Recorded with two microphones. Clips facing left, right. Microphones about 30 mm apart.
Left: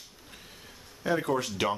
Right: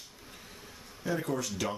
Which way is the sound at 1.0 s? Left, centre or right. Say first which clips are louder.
Left 5 dB; left.